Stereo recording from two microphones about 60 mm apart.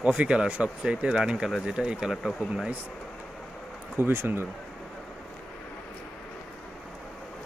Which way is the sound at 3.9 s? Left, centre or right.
Right.